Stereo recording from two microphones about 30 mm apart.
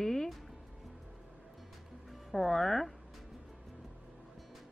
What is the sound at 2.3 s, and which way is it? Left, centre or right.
Speech, centre.